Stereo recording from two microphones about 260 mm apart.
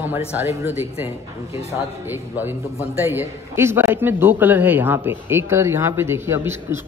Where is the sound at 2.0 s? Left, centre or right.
Centre.